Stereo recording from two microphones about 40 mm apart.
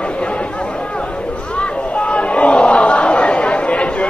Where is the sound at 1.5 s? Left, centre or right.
Left.